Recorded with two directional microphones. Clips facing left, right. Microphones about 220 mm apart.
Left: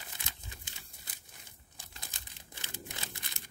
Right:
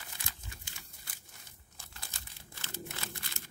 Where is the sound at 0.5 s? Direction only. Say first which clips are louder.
Left 1 dB; 20° left (ahead or behind).